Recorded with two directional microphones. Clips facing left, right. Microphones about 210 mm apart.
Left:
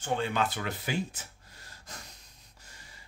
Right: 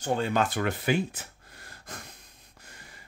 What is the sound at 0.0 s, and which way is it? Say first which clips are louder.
Speech: right 3 dB; 40° right (ahead or behind).